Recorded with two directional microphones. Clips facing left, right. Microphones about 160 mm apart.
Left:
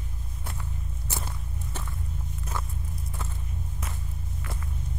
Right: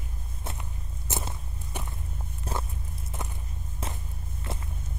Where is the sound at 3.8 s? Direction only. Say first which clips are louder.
Right 5 dB; 30° right (ahead or behind).